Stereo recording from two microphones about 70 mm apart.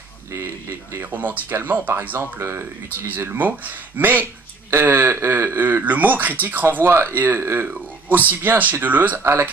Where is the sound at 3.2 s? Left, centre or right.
Right.